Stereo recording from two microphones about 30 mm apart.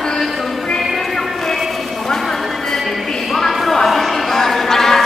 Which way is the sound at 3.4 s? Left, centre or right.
Centre.